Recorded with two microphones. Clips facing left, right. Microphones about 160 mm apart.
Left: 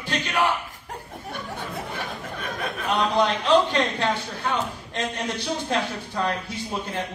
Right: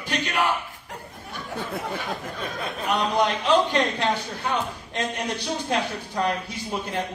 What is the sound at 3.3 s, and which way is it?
A man's voice, 15° right (ahead or behind).